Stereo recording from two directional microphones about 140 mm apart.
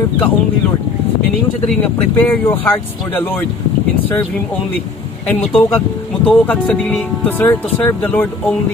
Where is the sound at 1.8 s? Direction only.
15° left (ahead or behind).